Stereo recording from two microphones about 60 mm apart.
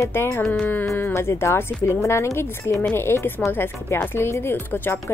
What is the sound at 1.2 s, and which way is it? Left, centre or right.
A woman's voice, left.